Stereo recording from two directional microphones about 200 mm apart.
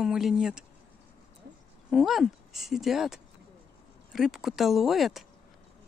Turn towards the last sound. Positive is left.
turn(degrees=0)  # may be behind; listen again after turning